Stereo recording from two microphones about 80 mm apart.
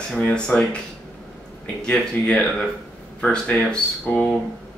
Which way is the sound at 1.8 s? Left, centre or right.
Centre.